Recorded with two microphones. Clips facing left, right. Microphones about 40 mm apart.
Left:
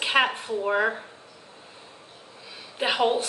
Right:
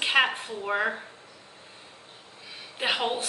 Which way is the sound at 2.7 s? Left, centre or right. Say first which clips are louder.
Left 4 dB; centre.